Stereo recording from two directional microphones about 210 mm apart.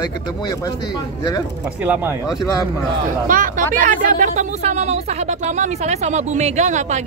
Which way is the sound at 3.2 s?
40° right (ahead or behind).